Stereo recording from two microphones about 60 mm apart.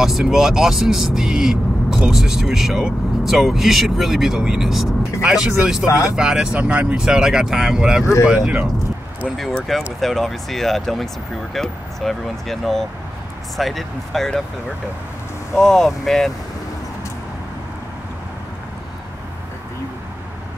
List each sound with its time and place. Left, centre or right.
0.0 s speech: centre
5.9 s speech: left
6.1 s speech: centre
7.0 s speech: centre
9.9 s speech: centre
15.6 s speech: centre